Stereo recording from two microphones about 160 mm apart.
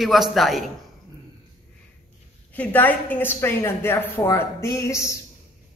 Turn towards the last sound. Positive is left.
turn(degrees=20)  # may be behind; listen again after turning